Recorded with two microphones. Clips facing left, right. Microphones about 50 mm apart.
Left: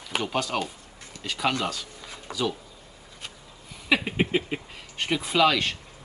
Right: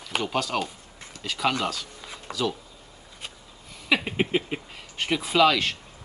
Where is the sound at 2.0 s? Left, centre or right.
Centre.